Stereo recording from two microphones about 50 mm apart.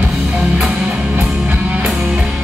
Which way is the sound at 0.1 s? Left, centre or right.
Centre.